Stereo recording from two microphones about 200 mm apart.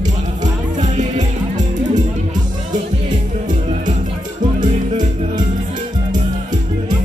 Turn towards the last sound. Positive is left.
turn(degrees=-40)  # may be behind; listen again after turning